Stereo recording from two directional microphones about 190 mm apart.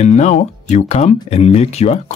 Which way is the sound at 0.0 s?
40° left (ahead or behind).